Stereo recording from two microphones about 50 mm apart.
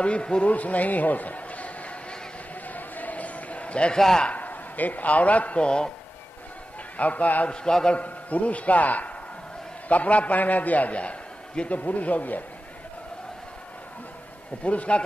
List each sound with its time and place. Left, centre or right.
0.0 s a man's voice: left
2.7 s a sound: left
4.2 s a man's voice: left
7.0 s a man's voice: left
7.5 s a man's voice: centre
8.0 s a man's voice: left
14.6 s a man's voice: left